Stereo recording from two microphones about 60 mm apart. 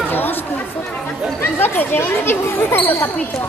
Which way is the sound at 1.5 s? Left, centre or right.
Left.